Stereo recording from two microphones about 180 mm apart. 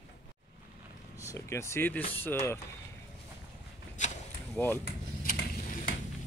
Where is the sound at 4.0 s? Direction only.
40° left (ahead or behind).